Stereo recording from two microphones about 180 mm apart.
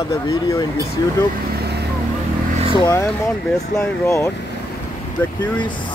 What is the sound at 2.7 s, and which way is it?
Speech, 15° left (ahead or behind).